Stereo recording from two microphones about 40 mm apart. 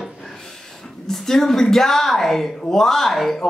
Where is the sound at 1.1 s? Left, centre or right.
Centre.